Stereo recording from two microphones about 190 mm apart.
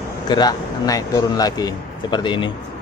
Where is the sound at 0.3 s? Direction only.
20° left (ahead or behind).